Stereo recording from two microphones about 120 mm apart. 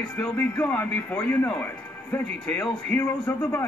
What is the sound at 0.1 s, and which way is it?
A man's voice, 20° left (ahead or behind).